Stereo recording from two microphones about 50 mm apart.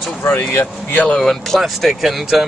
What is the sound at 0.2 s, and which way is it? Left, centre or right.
Speech, left.